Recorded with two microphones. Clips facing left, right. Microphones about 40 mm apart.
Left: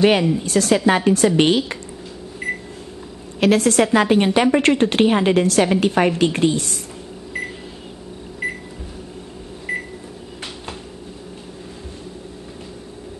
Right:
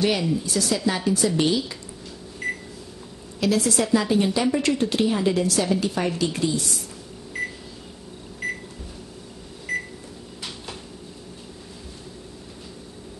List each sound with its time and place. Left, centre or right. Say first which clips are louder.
0.0 s speech: left 7 dB; left
2.4 s microwave oven: left 3 dB; left
3.3 s speech: left 7 dB; left
9.7 s microwave oven: left 2 dB; left